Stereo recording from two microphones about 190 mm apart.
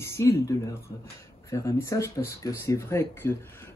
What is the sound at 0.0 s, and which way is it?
Speech, 15° left (ahead or behind).